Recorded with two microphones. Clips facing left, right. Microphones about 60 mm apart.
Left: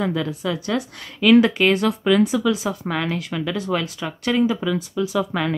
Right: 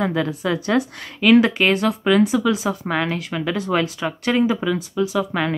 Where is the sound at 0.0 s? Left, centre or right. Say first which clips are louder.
Right 2 dB; right.